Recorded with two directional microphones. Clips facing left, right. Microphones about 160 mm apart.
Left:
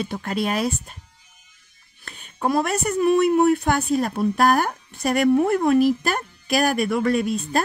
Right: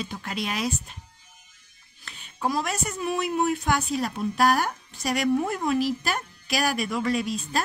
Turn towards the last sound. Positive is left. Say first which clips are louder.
# left 5 dB
turn(degrees=55)  # may be behind; listen again after turning